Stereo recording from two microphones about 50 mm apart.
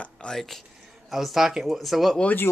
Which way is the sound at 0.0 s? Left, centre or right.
Centre.